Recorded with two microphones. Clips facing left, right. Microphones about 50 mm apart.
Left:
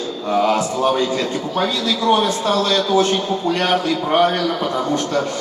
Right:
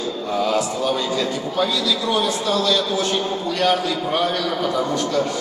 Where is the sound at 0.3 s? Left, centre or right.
Left.